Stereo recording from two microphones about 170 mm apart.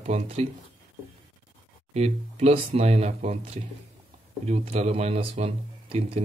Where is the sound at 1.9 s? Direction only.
40° right (ahead or behind).